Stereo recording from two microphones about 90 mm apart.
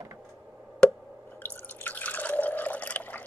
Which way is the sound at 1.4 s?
20° left (ahead or behind).